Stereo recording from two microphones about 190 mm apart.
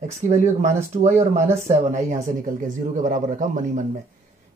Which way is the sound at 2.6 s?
45° right (ahead or behind).